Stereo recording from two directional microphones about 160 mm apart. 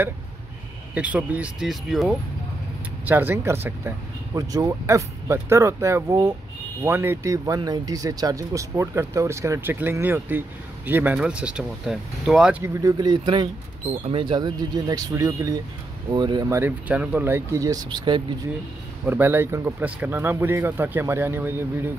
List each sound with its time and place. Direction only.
0.9 s speech: 10° right (ahead or behind)
3.1 s speech: 15° right (ahead or behind)
12.6 s speech: 25° right (ahead or behind)
19.0 s speech: 10° right (ahead or behind)